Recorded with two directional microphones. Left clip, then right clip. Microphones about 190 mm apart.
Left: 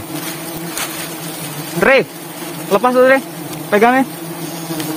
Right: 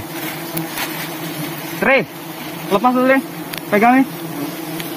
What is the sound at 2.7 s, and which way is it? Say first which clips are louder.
Speech: left 4 dB; 50° left (ahead or behind).